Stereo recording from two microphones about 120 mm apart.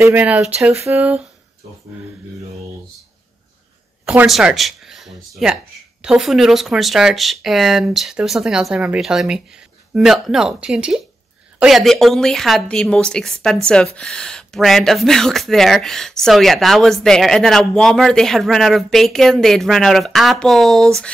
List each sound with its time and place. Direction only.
0.0 s speech: 15° right (ahead or behind)
4.3 s speech: centre (ahead or behind)